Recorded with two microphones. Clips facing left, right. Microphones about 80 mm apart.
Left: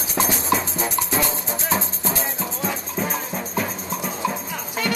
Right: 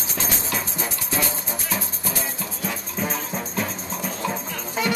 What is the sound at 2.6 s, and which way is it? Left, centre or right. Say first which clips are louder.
Music: left 2 dB; centre.